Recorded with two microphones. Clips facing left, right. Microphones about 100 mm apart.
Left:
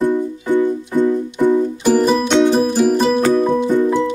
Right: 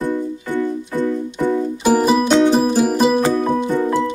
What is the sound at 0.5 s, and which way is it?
Music, 20° left (ahead or behind).